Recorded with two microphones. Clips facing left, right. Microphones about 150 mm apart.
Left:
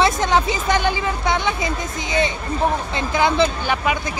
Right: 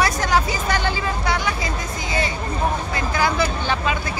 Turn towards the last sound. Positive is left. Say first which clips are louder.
# left 3 dB
turn(degrees=20)  # may be behind; listen again after turning